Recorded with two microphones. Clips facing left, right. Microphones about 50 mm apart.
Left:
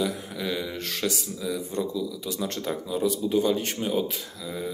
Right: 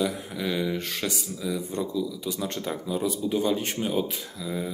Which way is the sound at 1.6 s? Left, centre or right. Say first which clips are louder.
Even; right.